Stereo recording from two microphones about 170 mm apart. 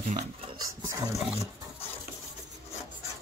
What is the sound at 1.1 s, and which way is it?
Speech, 40° left (ahead or behind).